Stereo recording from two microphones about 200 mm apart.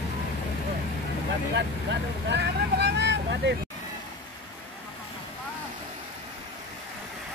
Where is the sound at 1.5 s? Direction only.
60° right (ahead or behind).